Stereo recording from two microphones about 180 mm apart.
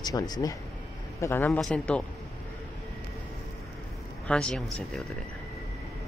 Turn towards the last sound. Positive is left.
turn(degrees=5)  # may be behind; listen again after turning